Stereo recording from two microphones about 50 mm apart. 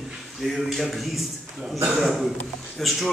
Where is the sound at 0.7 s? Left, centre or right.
Centre.